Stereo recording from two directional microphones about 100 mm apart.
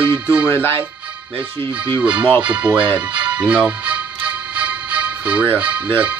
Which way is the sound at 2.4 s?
15° right (ahead or behind).